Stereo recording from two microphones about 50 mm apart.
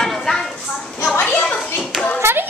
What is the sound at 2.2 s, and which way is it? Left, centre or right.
Hands, right.